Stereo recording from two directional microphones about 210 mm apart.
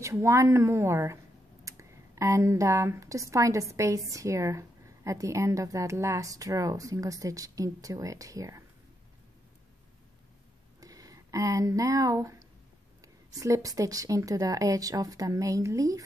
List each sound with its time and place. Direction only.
0.0 s a woman's voice: 15° right (ahead or behind)
10.8 s a woman's voice: 15° right (ahead or behind)